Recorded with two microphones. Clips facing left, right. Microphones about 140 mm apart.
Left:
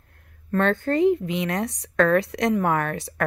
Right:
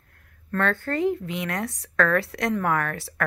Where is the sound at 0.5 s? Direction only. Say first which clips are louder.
Left 4 dB; 20° left (ahead or behind).